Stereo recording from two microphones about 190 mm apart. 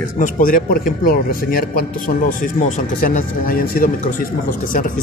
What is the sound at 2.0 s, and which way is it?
Speech, 45° left (ahead or behind).